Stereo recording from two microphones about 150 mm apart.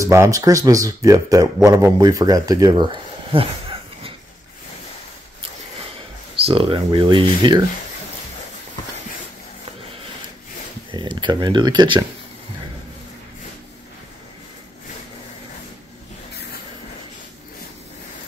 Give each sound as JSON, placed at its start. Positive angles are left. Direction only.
{"t": 0.0, "sound": "speech", "side_deg": -20}
{"t": 6.4, "sound": "speech", "side_deg": -35}
{"t": 10.9, "sound": "speech", "side_deg": -30}